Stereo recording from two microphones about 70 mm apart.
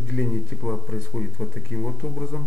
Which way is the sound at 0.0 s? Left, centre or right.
Centre.